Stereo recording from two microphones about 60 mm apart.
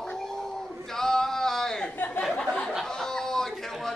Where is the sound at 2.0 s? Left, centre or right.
Left.